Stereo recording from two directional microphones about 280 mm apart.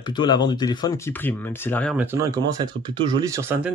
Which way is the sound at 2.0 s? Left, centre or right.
Centre.